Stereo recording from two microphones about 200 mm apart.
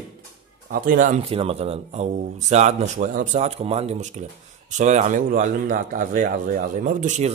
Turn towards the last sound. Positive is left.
turn(degrees=-40)  # may be behind; listen again after turning